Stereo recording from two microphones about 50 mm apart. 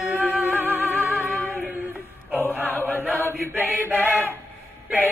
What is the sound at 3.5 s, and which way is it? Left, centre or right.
Chant, right.